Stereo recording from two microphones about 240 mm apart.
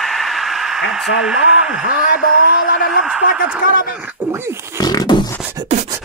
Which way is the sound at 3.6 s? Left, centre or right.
Left.